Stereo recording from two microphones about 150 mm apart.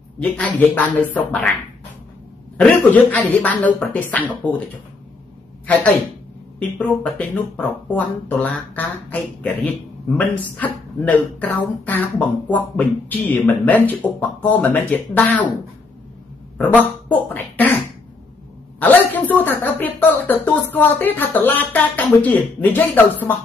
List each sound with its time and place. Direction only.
0.2 s speech: 10° left (ahead or behind)
2.5 s speech: 10° left (ahead or behind)
6.6 s speech: 10° left (ahead or behind)
17.3 s beatboxing: 10° left (ahead or behind)
18.8 s speech: 10° left (ahead or behind)